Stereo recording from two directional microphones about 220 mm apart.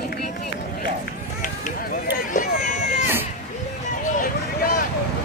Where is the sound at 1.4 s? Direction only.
40° left (ahead or behind).